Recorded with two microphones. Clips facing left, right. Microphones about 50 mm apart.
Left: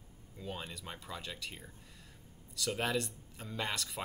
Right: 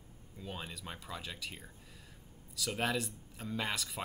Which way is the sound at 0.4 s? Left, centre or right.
Centre.